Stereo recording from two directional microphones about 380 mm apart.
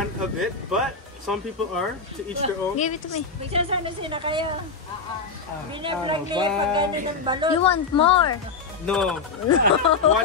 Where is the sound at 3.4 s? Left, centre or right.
Centre.